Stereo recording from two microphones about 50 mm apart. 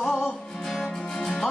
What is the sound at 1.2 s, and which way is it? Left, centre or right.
Music, centre.